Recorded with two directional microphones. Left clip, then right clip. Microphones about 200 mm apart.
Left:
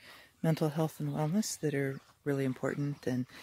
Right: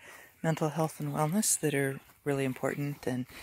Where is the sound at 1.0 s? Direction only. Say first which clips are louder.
Right 4 dB; 10° left (ahead or behind).